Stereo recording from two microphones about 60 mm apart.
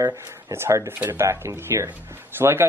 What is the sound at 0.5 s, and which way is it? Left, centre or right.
Speech, right.